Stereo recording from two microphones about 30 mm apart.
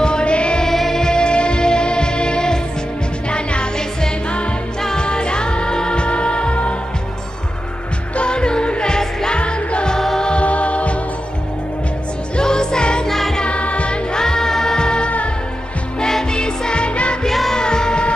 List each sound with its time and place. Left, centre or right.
0.0 s music: left
0.7 s music: centre
1.0 s music: left
4.9 s music: left
8.2 s music: left
9.4 s music: left
12.4 s music: left
13.0 s music: centre
13.5 s music: left
14.1 s music: left
17.3 s music: centre
17.6 s music: left